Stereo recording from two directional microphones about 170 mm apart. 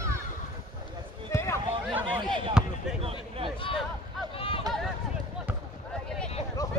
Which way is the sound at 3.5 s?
30° left (ahead or behind).